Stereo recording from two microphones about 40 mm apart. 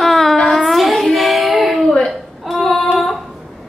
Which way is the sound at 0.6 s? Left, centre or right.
Centre.